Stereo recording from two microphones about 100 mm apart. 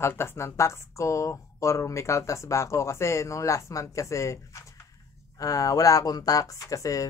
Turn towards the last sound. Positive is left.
turn(degrees=35)  # may be behind; listen again after turning